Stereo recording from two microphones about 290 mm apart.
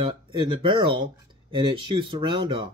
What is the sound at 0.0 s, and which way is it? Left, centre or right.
Speech, centre.